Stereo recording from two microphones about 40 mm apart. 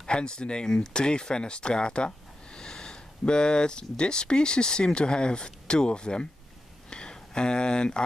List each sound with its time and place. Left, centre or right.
0.0 s speech: left